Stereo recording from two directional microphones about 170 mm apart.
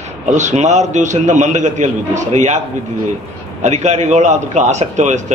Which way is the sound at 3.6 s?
40° right (ahead or behind).